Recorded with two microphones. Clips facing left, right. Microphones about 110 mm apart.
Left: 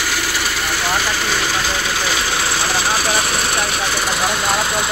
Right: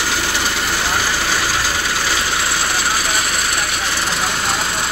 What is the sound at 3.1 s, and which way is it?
Vehicle, 25° left (ahead or behind).